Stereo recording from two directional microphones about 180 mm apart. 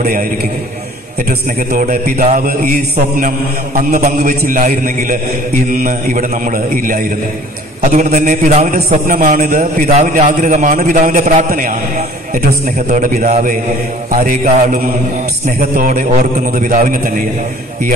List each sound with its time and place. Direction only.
1.7 s a man's voice: 50° right (ahead or behind)
12.7 s a man's voice: 45° right (ahead or behind)